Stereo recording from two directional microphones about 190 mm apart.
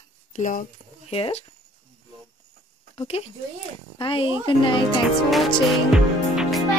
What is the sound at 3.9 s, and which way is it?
Speech, 25° left (ahead or behind).